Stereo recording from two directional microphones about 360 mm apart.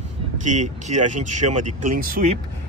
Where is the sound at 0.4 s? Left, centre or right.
Centre.